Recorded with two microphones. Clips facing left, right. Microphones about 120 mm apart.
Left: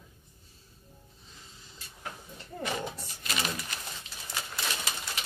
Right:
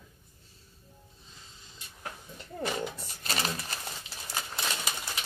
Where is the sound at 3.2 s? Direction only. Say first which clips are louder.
Right 1 dB; 35° right (ahead or behind).